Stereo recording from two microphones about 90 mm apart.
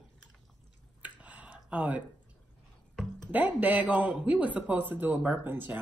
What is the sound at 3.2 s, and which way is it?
Speech, 20° right (ahead or behind).